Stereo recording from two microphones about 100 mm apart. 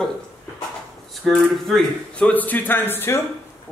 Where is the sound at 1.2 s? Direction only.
5° left (ahead or behind); by 3.2 s 20° left (ahead or behind).